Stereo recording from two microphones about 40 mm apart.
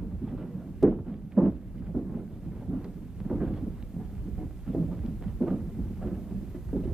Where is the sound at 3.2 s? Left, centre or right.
Centre.